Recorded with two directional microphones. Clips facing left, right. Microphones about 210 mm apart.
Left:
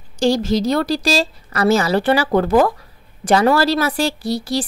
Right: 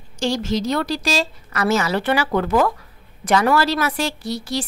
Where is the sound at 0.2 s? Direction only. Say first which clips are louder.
Left 5 dB; 35° left (ahead or behind).